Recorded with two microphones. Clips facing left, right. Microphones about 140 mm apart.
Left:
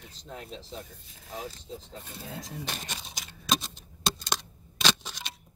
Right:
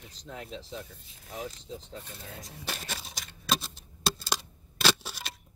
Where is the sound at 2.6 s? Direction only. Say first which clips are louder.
Even; 5° right (ahead or behind).